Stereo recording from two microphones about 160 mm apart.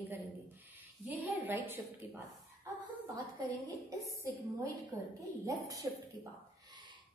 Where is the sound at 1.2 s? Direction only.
10° right (ahead or behind).